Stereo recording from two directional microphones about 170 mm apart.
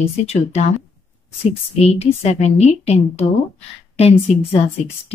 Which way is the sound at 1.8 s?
35° left (ahead or behind).